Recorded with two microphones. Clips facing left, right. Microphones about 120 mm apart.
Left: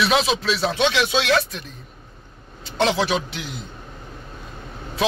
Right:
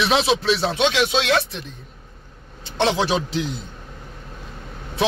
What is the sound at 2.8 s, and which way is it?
Speech, 30° right (ahead or behind).